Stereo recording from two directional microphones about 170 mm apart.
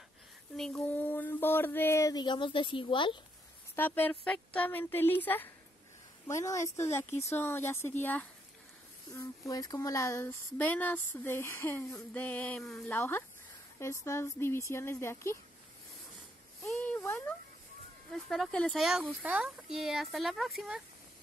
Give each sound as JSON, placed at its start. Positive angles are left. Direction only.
{"t": 0.6, "sound": "speech", "side_deg": 5}
{"t": 3.7, "sound": "speech", "side_deg": 10}
{"t": 16.6, "sound": "speech", "side_deg": 15}
{"t": 18.1, "sound": "speech", "side_deg": 0}